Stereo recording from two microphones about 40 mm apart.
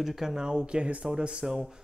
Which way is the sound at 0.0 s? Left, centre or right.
Centre.